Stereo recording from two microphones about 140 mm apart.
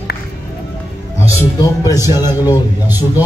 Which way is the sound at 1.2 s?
20° left (ahead or behind).